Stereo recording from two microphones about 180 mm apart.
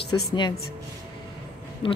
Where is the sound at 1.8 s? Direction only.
30° left (ahead or behind).